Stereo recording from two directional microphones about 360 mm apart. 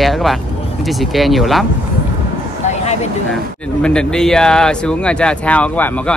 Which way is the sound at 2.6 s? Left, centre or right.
Centre.